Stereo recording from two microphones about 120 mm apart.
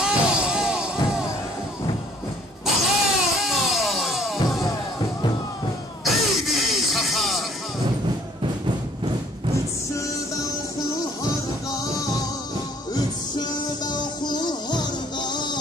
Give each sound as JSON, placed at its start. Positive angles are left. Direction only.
{"t": 0.0, "sound": "music", "side_deg": -10}
{"t": 2.6, "sound": "music", "side_deg": 0}
{"t": 6.0, "sound": "music", "side_deg": 0}
{"t": 14.2, "sound": "music", "side_deg": 35}